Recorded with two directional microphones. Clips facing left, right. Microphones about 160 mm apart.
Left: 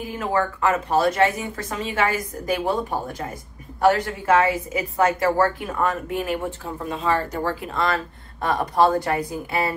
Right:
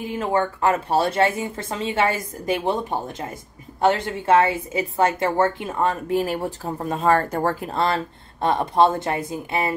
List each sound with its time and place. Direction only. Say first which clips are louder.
0.0 s a woman's voice: right 1 dB; 25° right (ahead or behind)